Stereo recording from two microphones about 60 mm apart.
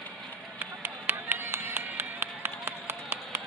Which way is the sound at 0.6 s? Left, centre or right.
Right.